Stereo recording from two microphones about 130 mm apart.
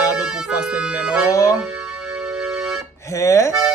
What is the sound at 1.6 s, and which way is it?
Keyboard, 5° right (ahead or behind).